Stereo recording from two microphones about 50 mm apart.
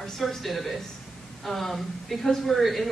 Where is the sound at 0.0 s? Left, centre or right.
Centre.